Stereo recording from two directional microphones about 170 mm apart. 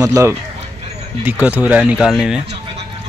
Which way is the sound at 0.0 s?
20° right (ahead or behind).